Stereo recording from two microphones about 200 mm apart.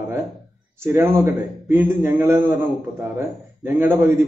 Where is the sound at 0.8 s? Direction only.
15° right (ahead or behind).